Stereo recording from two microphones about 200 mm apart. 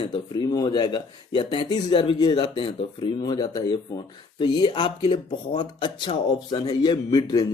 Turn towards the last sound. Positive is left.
turn(degrees=20)  # may be behind; listen again after turning